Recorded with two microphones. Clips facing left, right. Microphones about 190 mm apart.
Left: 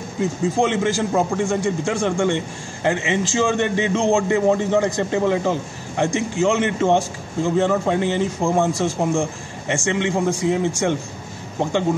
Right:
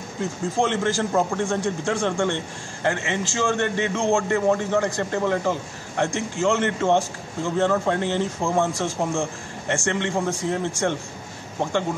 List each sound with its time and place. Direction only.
0.6 s a man's voice: 15° left (ahead or behind)